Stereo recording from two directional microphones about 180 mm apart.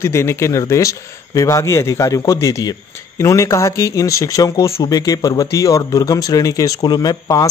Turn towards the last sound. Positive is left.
turn(degrees=20)  # may be behind; listen again after turning